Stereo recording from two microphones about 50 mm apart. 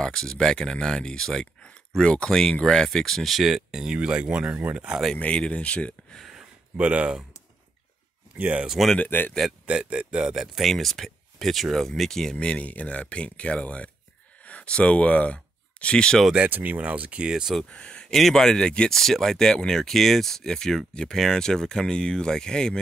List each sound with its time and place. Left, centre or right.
0.0 s speech: centre
3.9 s speech: right
5.1 s speech: left
6.8 s speech: right
8.4 s speech: right
9.1 s speech: left
9.7 s speech: right
10.6 s speech: centre
12.4 s speech: left
16.4 s speech: right
17.3 s speech: centre
17.6 s speech: left
18.1 s speech: centre
18.9 s speech: centre